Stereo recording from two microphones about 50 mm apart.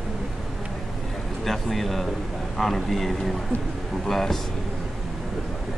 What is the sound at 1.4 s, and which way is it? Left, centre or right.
A man's voice, centre.